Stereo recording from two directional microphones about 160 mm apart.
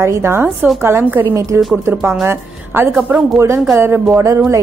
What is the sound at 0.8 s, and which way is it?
A woman's voice, 15° right (ahead or behind).